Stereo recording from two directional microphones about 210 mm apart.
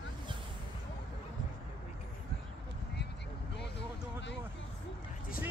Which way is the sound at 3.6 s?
55° left (ahead or behind).